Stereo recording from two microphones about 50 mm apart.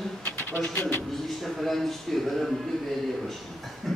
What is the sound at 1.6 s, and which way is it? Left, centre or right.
Speech, centre.